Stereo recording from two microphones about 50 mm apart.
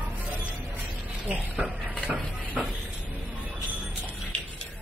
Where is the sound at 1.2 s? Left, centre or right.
Right.